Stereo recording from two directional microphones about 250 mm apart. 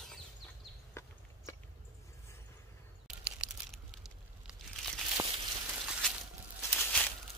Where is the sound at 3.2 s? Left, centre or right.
Centre.